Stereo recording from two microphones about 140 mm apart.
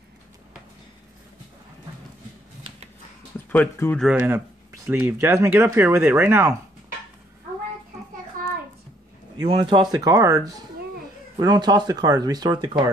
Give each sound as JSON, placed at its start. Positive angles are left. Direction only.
{"t": 3.5, "sound": "speech", "side_deg": 15}
{"t": 4.0, "sound": "speech", "side_deg": -10}
{"t": 8.3, "sound": "a sound", "side_deg": -80}
{"t": 9.4, "sound": "speech", "side_deg": -30}